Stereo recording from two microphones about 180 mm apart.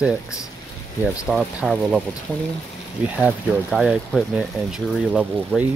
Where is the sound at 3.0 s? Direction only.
10° right (ahead or behind).